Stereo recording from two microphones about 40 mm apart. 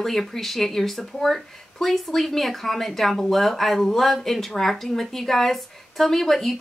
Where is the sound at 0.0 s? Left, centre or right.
Centre.